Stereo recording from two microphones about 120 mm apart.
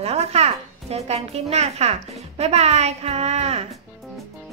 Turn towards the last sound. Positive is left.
turn(degrees=-65)  # may be behind; listen again after turning